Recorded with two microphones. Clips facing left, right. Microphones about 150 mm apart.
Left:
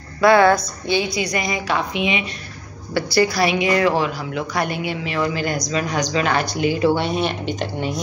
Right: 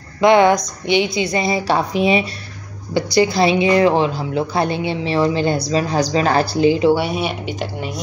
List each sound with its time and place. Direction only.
0.2 s a woman's voice: 20° right (ahead or behind); by 2.2 s 35° right (ahead or behind)
2.9 s a woman's voice: 20° right (ahead or behind)
6.8 s speech: 10° right (ahead or behind)